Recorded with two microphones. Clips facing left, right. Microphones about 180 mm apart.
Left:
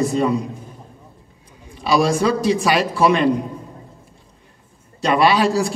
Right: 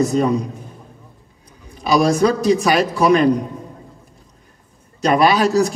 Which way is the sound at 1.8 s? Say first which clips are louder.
Right 2 dB; 40° right (ahead or behind).